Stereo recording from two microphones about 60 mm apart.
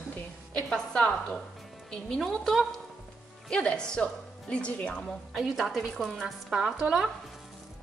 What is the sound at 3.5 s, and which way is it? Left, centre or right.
A woman's voice, centre.